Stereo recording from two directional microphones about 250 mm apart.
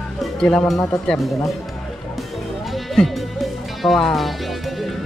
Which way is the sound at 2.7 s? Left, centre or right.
Centre.